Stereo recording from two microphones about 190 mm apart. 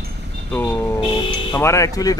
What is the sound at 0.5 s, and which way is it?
Speech, 10° left (ahead or behind).